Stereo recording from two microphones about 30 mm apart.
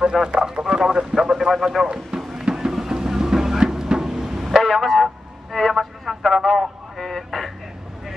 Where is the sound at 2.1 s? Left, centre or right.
Right.